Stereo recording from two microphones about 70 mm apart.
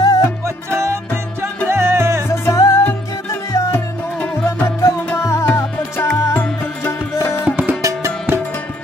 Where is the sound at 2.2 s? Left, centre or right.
Left.